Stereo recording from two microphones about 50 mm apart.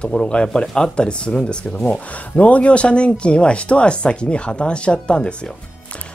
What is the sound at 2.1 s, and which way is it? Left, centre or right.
Speech, left.